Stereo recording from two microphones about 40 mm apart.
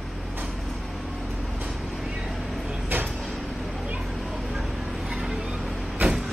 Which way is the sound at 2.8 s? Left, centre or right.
Right.